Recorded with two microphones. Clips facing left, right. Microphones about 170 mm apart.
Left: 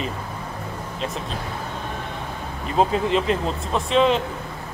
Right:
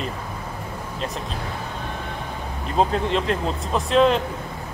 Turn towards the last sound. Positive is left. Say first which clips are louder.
# right 1 dB
turn(degrees=0)  # may be behind; listen again after turning